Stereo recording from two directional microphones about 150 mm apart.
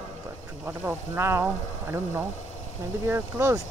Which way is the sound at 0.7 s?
15° right (ahead or behind).